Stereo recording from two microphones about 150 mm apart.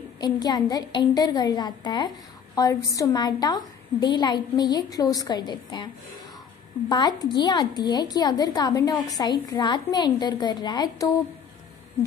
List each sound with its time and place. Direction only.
0.2 s a woman's voice: 25° left (ahead or behind)
6.9 s a woman's voice: 30° left (ahead or behind)